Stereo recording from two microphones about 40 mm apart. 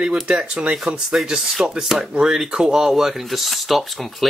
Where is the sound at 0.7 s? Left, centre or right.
Centre.